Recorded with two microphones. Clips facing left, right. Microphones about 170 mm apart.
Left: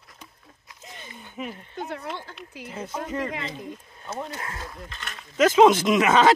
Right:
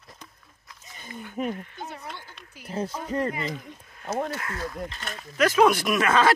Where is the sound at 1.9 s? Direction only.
90° left.